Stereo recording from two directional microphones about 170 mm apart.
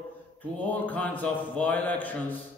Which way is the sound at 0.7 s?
10° left (ahead or behind).